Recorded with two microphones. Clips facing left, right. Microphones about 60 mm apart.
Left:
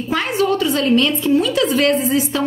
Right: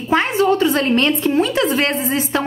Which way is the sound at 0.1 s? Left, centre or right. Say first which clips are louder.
Right 3 dB; right.